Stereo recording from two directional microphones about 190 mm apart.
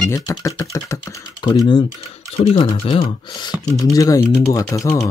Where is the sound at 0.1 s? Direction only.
15° left (ahead or behind).